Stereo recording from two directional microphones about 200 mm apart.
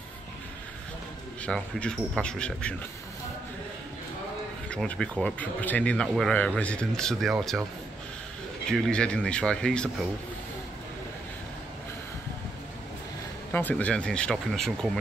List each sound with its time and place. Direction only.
1.4 s speech: 5° left (ahead or behind)
4.6 s speech: 5° left (ahead or behind)
8.6 s speech: centre (ahead or behind)
13.5 s speech: 10° left (ahead or behind)